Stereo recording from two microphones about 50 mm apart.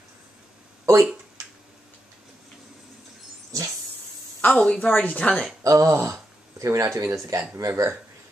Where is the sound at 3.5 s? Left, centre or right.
Right.